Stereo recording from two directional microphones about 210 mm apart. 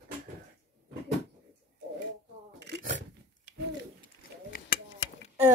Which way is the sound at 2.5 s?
50° right (ahead or behind).